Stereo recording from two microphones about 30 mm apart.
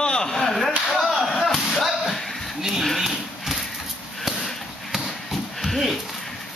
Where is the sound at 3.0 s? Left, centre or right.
Centre.